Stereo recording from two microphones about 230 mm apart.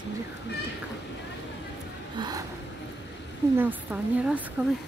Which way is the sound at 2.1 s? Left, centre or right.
Centre.